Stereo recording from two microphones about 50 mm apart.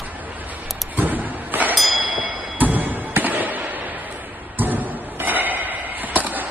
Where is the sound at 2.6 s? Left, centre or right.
Right.